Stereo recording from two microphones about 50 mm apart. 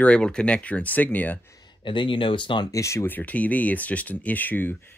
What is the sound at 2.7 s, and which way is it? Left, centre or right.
Speech, left.